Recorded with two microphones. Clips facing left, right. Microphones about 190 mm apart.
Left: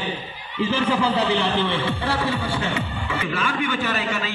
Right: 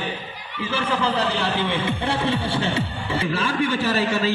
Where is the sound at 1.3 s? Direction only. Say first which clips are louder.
Left 2 dB; 15° right (ahead or behind).